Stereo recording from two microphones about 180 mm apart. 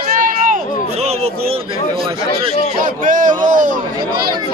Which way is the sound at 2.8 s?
45° right (ahead or behind).